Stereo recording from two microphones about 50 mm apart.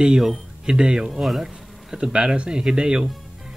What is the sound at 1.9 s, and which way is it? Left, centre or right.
Speech, centre.